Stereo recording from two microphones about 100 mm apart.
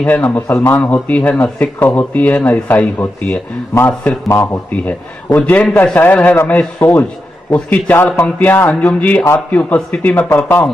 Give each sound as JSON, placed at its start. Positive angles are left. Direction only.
{"t": 0.0, "sound": "speech", "side_deg": 15}
{"t": 1.4, "sound": "speech", "side_deg": 25}